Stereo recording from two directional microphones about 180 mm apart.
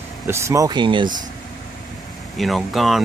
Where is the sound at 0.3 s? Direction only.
15° right (ahead or behind).